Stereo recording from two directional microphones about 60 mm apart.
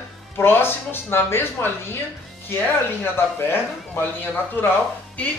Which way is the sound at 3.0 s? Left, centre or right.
Left.